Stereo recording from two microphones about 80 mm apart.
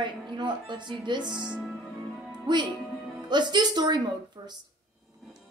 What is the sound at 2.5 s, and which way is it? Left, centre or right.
A woman's voice, right.